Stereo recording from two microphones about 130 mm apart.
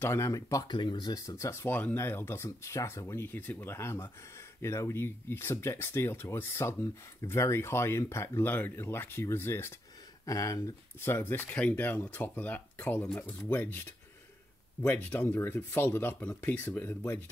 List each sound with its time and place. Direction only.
0.0 s speech: 20° left (ahead or behind)
0.7 s speech: 35° left (ahead or behind); by 17.2 s 15° left (ahead or behind)